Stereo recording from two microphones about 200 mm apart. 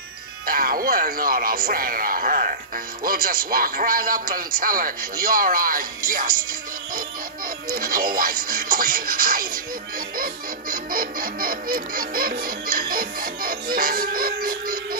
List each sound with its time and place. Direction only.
0.5 s music: 45° right (ahead or behind)